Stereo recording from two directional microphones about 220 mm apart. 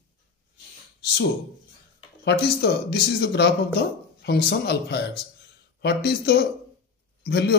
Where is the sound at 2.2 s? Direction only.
45° left (ahead or behind).